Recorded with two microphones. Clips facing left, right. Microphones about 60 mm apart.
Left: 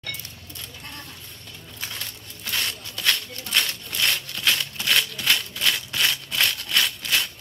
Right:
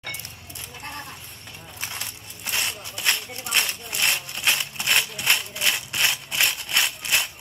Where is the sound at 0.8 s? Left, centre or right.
Right.